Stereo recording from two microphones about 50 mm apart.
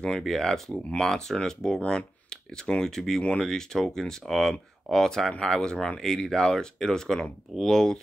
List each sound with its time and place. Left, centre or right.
0.2 s speech: centre